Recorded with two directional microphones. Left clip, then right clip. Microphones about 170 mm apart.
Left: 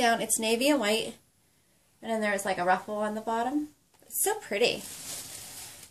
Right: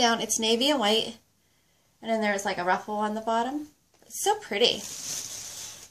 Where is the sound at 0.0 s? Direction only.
25° right (ahead or behind).